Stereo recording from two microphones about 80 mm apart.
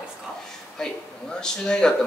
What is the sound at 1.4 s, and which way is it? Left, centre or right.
Speech, centre.